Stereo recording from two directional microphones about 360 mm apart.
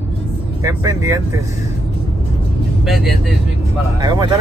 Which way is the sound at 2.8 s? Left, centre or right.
Centre.